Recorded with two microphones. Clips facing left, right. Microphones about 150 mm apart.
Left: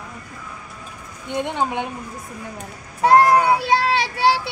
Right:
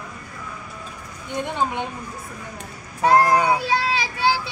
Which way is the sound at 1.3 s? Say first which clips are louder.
Left 2 dB; 15° left (ahead or behind).